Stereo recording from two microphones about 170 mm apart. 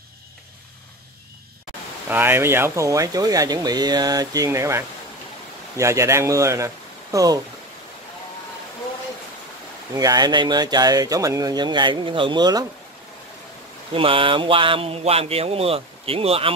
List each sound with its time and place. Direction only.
2.0 s speech: 10° right (ahead or behind)
9.9 s speech: 20° right (ahead or behind)
13.9 s speech: 30° right (ahead or behind)